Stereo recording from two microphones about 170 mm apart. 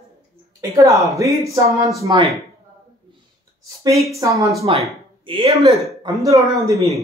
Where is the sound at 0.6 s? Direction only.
20° right (ahead or behind).